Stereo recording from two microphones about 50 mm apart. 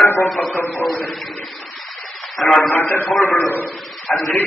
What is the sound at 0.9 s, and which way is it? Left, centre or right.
Speech, left.